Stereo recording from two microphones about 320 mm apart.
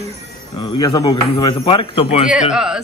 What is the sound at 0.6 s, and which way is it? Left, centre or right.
A man's voice, centre.